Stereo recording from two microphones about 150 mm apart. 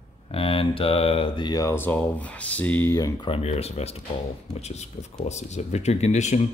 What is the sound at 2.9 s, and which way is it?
Speech, 25° left (ahead or behind).